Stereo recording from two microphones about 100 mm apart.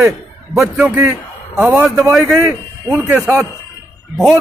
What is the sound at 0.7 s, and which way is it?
A man's voice, 15° right (ahead or behind).